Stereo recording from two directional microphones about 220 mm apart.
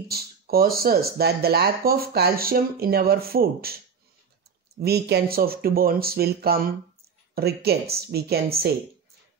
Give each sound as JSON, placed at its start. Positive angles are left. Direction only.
{"t": 0.1, "sound": "speech", "side_deg": -45}